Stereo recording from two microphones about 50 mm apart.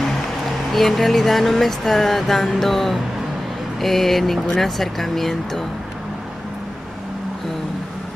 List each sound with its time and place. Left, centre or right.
0.7 s speech: centre